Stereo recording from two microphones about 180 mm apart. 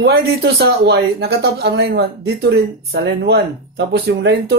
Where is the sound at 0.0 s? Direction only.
65° right (ahead or behind).